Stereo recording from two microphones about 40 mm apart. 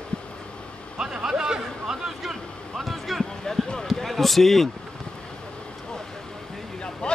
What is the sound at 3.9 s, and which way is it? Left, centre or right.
Basketball bounce, centre.